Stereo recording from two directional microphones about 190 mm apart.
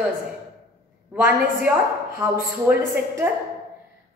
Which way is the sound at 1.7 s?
10° right (ahead or behind).